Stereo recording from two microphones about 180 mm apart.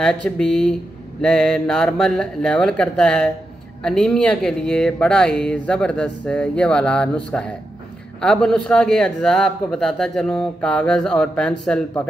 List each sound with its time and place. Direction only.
0.0 s speech: 5° left (ahead or behind)